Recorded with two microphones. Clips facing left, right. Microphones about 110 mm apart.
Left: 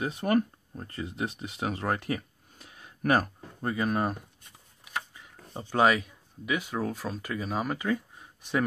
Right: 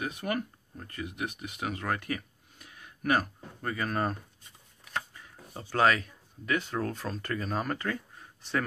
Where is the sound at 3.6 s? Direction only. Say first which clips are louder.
Left 3 dB; 15° left (ahead or behind).